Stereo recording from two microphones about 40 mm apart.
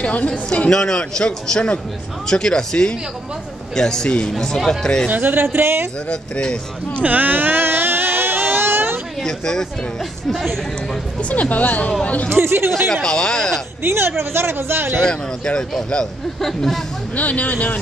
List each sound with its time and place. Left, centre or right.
0.0 s speech: left
0.5 s a man's voice: centre
5.2 s speech: right
6.0 s a man's voice: left
7.0 s a sound: right
9.2 s speech: centre
10.3 s speech: centre
11.1 s speech: left
12.3 s speech: right
12.8 s speech: centre
13.8 s speech: right
15.0 s a man's voice: centre
16.3 s speech: centre
17.1 s speech: left